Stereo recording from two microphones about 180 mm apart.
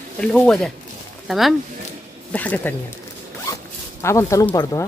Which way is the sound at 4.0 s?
15° left (ahead or behind).